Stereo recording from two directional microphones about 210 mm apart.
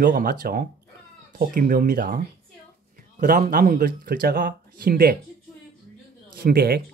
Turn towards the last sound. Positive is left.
turn(degrees=-45)  # may be behind; listen again after turning